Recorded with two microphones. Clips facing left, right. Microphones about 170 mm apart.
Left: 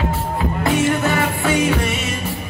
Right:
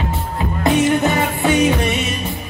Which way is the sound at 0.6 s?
20° right (ahead or behind).